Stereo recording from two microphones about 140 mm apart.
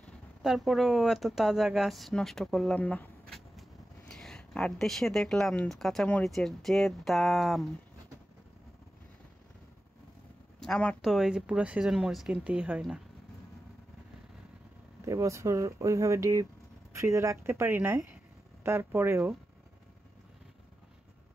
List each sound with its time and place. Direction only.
0.0 s speech: centre (ahead or behind)
10.6 s speech: 5° left (ahead or behind)
15.0 s speech: 20° right (ahead or behind)